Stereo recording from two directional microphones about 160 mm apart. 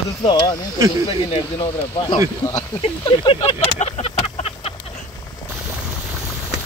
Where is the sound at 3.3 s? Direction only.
40° left (ahead or behind).